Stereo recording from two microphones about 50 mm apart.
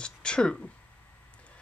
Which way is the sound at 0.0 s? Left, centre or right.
Centre.